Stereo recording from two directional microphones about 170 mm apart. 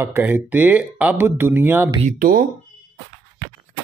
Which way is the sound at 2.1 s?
55° right (ahead or behind).